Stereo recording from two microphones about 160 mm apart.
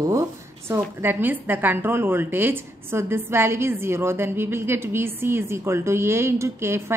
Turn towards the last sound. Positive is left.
turn(degrees=-15)  # may be behind; listen again after turning